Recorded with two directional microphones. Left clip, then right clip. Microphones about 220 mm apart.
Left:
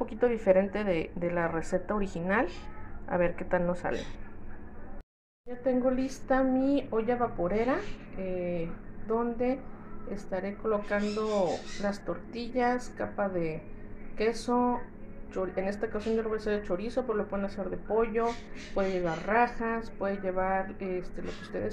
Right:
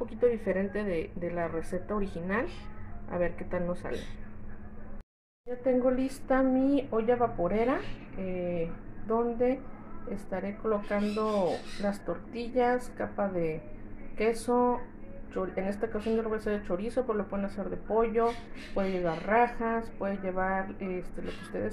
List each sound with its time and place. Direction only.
0.2 s a woman's voice: 15° left (ahead or behind)
5.6 s speech: 5° right (ahead or behind)